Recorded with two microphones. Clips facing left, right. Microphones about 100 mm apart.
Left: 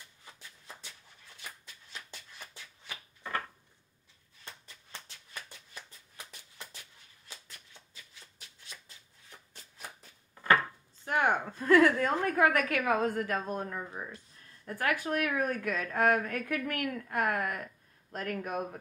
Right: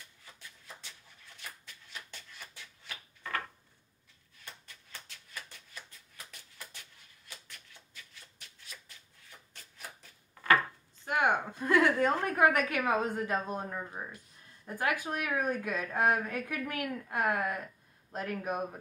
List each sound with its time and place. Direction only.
11.1 s a woman's voice: 15° right (ahead or behind)